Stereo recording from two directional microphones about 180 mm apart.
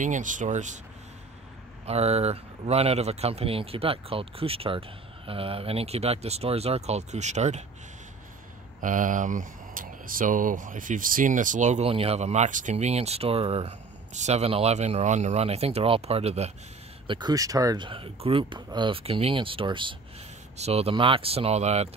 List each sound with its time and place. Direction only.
0.0 s speech: 45° right (ahead or behind)
1.9 s speech: 35° right (ahead or behind)
8.8 s speech: 45° right (ahead or behind)
17.1 s speech: 20° right (ahead or behind)